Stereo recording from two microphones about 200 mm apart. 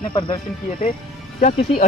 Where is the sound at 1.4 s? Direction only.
35° left (ahead or behind).